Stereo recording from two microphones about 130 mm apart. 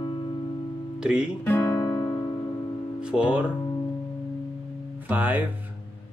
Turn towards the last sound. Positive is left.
turn(degrees=-15)  # may be behind; listen again after turning